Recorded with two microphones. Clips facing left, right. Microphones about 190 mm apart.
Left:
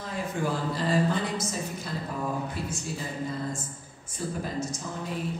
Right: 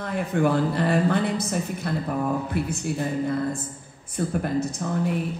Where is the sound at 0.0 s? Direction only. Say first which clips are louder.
Right 7 dB; 60° right (ahead or behind).